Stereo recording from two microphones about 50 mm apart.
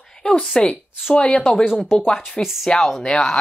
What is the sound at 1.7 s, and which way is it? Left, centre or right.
Speech, centre.